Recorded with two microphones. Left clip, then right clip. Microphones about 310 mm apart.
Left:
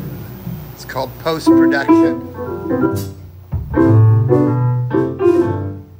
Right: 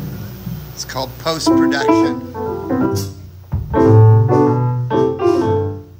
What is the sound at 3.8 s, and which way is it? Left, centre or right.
Keyboard, right.